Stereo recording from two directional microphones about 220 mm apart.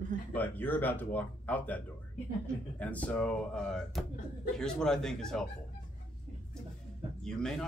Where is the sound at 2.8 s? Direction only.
5° left (ahead or behind).